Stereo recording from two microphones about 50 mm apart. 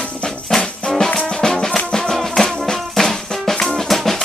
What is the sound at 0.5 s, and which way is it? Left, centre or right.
Music, centre.